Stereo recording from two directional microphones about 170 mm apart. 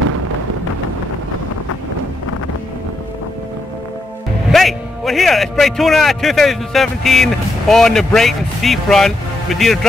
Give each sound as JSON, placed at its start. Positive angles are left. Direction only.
{"t": 4.5, "sound": "a man's voice", "side_deg": 0}